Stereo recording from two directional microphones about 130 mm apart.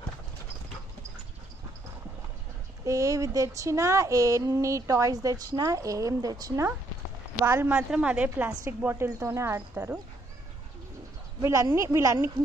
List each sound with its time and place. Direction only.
2.8 s speech: 25° right (ahead or behind)
7.7 s a woman's voice: 10° right (ahead or behind)
11.4 s speech: 20° right (ahead or behind)